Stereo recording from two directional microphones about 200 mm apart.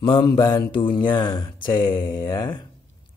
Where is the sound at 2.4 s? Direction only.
10° left (ahead or behind).